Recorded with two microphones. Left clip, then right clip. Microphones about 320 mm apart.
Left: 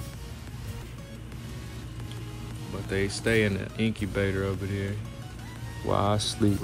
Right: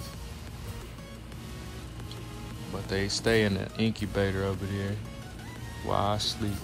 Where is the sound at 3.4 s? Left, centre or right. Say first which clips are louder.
Left 1 dB; right.